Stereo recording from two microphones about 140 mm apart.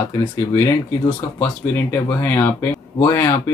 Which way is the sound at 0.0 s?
20° left (ahead or behind).